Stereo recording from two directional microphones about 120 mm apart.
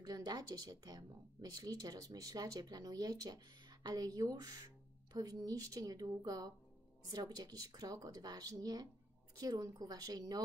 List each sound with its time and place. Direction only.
0.0 s speech: 35° right (ahead or behind)